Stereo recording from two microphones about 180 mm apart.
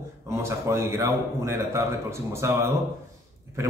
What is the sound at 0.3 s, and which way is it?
A man's voice, 15° right (ahead or behind).